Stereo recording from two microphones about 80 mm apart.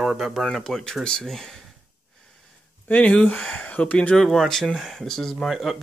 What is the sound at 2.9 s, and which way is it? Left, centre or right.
Speech, centre.